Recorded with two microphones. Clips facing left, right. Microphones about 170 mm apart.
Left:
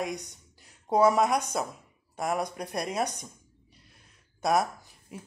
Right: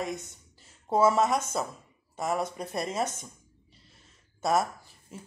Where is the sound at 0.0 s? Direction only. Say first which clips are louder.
Left 1 dB; 15° left (ahead or behind).